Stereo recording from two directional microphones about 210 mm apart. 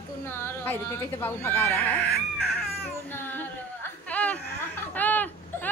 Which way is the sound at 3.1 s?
10° left (ahead or behind).